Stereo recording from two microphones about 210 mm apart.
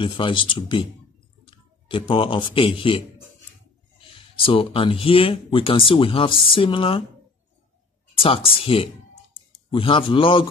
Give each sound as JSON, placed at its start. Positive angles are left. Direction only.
{"t": 0.0, "sound": "speech", "side_deg": 25}
{"t": 4.1, "sound": "speech", "side_deg": 25}
{"t": 8.2, "sound": "speech", "side_deg": 25}